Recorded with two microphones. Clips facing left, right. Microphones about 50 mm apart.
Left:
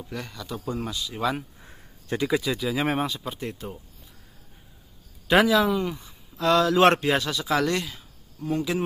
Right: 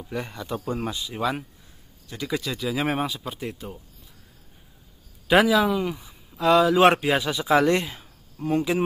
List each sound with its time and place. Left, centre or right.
0.1 s speech: right
2.2 s speech: centre
5.3 s speech: centre; by 8.8 s right